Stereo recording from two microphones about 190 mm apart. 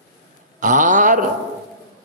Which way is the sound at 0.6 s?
40° right (ahead or behind).